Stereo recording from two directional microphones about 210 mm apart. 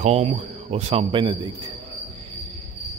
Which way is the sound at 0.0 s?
30° right (ahead or behind).